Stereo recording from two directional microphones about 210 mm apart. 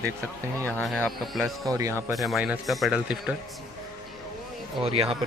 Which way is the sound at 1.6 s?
15° right (ahead or behind).